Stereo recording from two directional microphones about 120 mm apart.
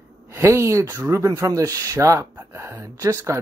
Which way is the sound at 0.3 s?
25° right (ahead or behind).